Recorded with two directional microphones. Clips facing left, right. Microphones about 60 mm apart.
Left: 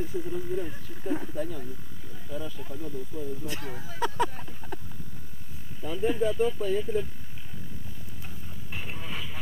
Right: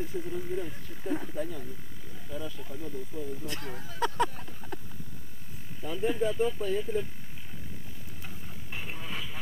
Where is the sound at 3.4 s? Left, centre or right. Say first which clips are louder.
Left 2 dB; centre.